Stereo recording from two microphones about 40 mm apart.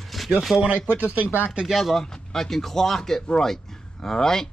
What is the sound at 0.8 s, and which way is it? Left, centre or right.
Speech, right.